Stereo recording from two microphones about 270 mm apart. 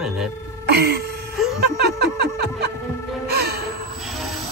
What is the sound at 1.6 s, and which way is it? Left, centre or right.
Music, right.